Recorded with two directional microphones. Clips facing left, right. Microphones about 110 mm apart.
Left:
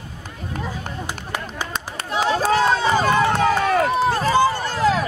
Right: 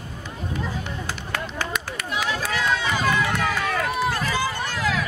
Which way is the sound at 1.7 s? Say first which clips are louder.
Left 2 dB; 30° left (ahead or behind).